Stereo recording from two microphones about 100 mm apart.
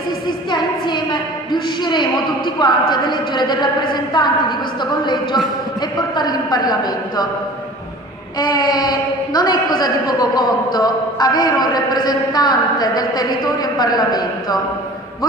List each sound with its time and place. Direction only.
0.5 s a sound: 50° left (ahead or behind)
1.5 s a man's voice: 50° left (ahead or behind)
8.4 s a man's voice: 45° left (ahead or behind)